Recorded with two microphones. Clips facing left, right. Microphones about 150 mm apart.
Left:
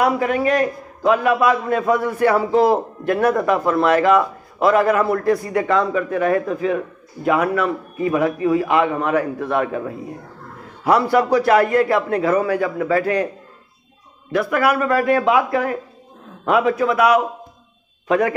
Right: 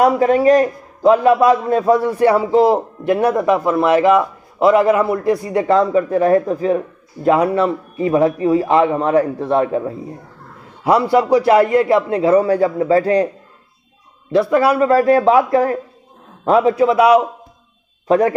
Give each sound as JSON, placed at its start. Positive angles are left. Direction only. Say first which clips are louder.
{"t": 0.0, "sound": "a man's voice", "louder": "right 6 dB", "side_deg": -35}
{"t": 14.3, "sound": "a man's voice", "louder": "right 4 dB", "side_deg": -30}